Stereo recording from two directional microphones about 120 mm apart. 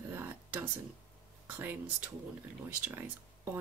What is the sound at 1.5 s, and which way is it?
Speech, 15° right (ahead or behind).